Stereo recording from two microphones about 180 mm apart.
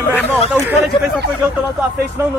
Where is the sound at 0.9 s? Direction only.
30° left (ahead or behind).